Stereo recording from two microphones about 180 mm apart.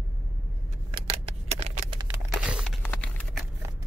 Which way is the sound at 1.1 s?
35° right (ahead or behind).